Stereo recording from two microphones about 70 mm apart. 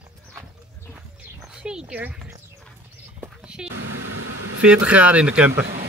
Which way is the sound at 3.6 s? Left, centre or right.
Centre.